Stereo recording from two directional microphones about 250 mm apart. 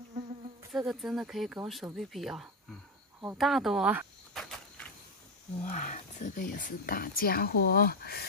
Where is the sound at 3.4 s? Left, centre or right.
Centre.